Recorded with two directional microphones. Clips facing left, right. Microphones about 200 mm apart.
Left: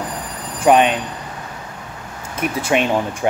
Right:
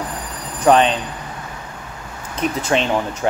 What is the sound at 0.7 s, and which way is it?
Speech, 10° left (ahead or behind).